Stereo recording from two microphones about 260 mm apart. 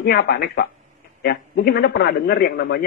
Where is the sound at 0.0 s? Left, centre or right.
Left.